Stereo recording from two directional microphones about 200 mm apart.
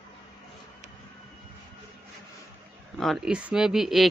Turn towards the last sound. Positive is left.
turn(degrees=0)  # may be behind; listen again after turning